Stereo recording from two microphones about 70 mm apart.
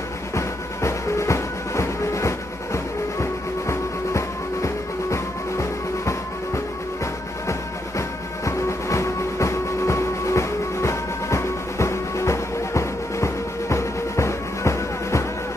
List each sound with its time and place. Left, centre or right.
0.4 s music: left
8.5 s train: left